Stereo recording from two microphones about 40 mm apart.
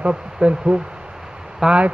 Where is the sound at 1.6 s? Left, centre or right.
Centre.